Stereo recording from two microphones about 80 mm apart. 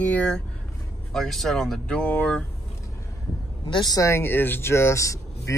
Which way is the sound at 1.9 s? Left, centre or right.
Centre.